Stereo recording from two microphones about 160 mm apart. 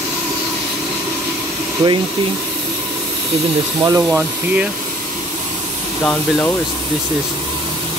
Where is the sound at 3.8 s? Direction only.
15° right (ahead or behind).